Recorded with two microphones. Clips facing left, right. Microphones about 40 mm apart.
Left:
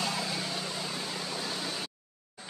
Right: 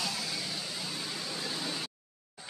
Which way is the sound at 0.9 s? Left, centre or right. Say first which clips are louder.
Left 2 dB; centre.